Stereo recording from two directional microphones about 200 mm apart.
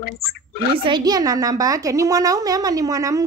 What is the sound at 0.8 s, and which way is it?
A woman's voice, 20° right (ahead or behind).